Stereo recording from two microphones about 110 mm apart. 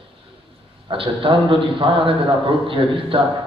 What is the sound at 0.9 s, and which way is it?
A man's voice, 55° right (ahead or behind).